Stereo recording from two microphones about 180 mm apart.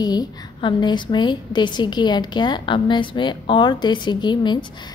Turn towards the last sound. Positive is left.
turn(degrees=25)  # may be behind; listen again after turning